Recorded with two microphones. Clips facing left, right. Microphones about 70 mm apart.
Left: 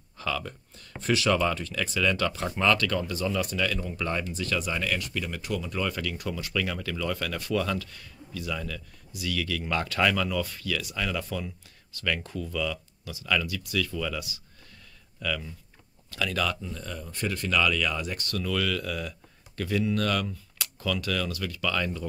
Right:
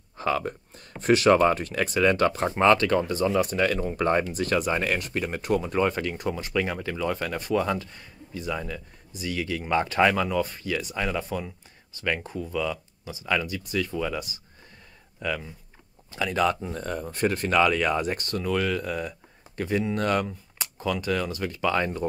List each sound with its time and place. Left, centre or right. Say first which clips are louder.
0.2 s speech: right 6 dB; right
16.6 s speech: right 7 dB; right
18.3 s speech: right 2 dB; right